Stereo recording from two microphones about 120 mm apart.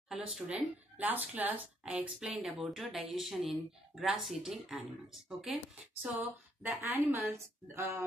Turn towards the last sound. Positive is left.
turn(degrees=-20)  # may be behind; listen again after turning